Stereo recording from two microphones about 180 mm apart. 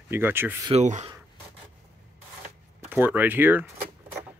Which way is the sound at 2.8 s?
10° right (ahead or behind).